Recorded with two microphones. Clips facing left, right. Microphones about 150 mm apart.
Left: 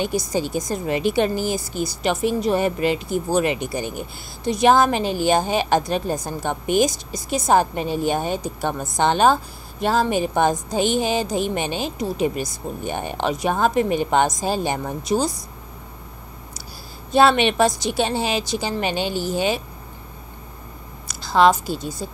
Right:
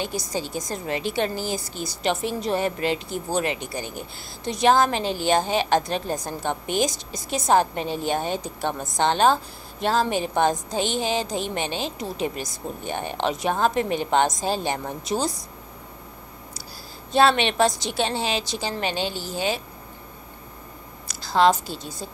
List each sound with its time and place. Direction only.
0.0 s a woman's voice: 15° left (ahead or behind)
15.0 s speech: 40° left (ahead or behind)
17.1 s a woman's voice: 10° left (ahead or behind)
21.6 s a woman's voice: 50° left (ahead or behind)